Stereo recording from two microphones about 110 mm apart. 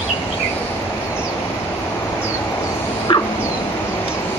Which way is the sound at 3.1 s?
50° left (ahead or behind).